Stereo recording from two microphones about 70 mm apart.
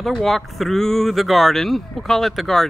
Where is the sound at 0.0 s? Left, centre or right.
Centre.